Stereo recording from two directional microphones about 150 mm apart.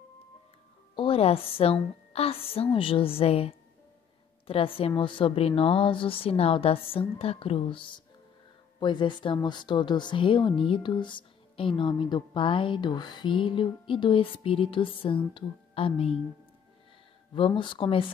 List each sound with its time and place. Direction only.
0.9 s a woman's voice: 40° left (ahead or behind)
17.3 s a woman's voice: 30° left (ahead or behind)